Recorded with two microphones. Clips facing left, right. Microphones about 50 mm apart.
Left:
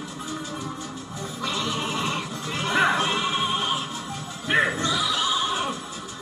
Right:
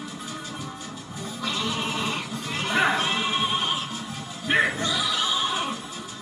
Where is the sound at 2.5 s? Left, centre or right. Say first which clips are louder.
Left 1 dB; right.